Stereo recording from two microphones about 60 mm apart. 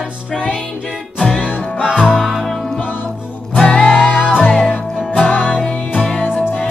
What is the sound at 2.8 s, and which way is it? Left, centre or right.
Music, left.